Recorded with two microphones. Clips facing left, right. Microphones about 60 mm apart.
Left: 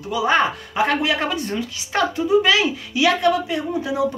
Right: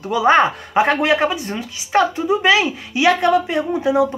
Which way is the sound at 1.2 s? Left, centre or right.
Centre.